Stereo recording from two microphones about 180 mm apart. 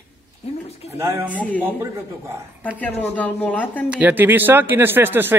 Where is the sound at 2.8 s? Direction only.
10° left (ahead or behind).